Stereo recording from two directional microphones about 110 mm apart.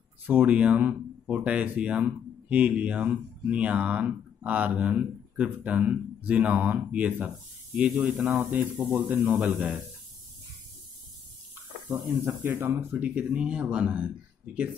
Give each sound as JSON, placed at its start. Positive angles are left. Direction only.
{"t": 0.3, "sound": "speech", "side_deg": -15}
{"t": 8.3, "sound": "speech", "side_deg": -15}
{"t": 11.9, "sound": "speech", "side_deg": -20}